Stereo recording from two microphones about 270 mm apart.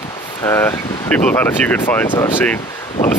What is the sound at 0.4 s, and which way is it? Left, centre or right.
Speech, centre.